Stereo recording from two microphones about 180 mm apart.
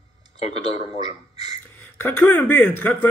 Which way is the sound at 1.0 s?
20° right (ahead or behind).